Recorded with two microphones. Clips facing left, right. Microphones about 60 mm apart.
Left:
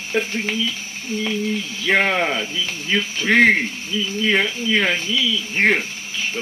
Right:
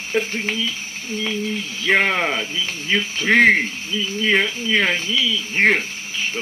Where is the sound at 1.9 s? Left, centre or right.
Centre.